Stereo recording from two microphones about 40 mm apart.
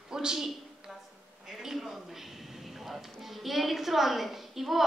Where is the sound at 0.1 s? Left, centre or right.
Centre.